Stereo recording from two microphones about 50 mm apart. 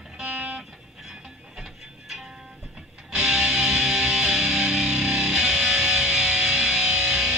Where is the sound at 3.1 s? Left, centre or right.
Centre.